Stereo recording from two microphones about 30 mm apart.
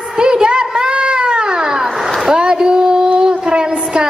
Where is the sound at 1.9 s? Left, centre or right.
Centre.